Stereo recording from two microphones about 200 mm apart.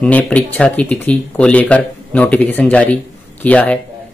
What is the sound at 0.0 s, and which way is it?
Speech, 5° left (ahead or behind).